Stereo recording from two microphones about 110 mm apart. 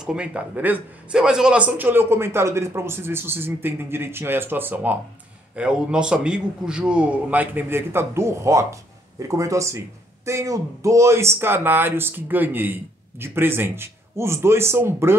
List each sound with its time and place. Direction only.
0.0 s a man's voice: 10° right (ahead or behind)